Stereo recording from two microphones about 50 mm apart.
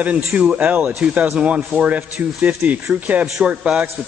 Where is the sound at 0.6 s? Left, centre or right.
Right.